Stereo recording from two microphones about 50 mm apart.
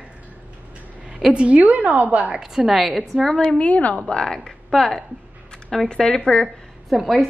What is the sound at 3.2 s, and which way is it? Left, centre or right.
A woman's voice, left.